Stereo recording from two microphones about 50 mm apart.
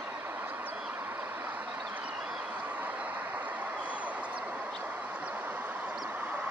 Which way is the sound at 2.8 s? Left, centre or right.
Right.